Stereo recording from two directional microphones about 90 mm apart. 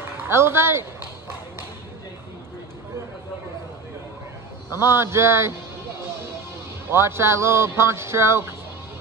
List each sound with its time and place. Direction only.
0.3 s speech: 30° right (ahead or behind)
4.6 s speech: 25° right (ahead or behind)
6.9 s speech: 30° right (ahead or behind)